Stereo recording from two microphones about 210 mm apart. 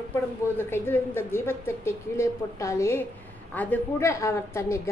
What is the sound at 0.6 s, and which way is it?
A woman's voice, 10° left (ahead or behind).